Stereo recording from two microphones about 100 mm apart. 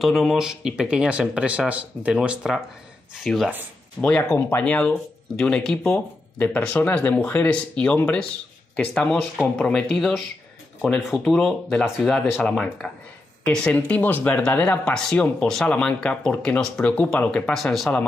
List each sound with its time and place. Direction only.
0.0 s speech: centre (ahead or behind)
3.3 s speech: 5° left (ahead or behind)
4.4 s speech: 20° left (ahead or behind); by 18.0 s 5° left (ahead or behind)